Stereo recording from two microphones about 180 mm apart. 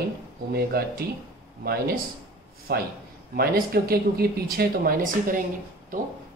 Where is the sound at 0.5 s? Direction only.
60° right (ahead or behind).